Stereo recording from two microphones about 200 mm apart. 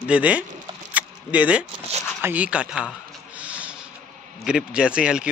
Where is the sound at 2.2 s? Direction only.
10° right (ahead or behind).